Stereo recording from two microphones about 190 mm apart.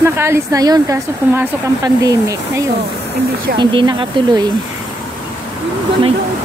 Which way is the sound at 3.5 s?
25° right (ahead or behind).